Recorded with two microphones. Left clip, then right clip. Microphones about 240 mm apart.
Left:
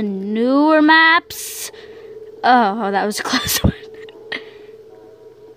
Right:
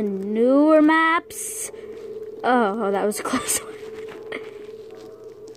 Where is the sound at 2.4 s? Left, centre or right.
Left.